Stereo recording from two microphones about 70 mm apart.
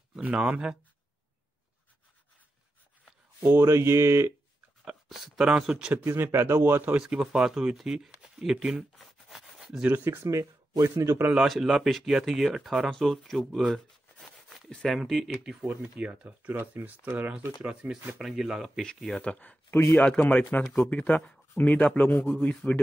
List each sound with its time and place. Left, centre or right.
0.1 s speech: centre
3.5 s speech: right
4.8 s speech: centre
6.0 s speech: right
7.0 s speech: centre
8.9 s a sound: centre
9.9 s speech: right
11.3 s speech: centre
14.2 s a sound: centre
14.7 s speech: centre
15.0 s speech: centre
15.6 s speech: right
17.6 s speech: centre
18.8 s speech: centre; by 22.6 s left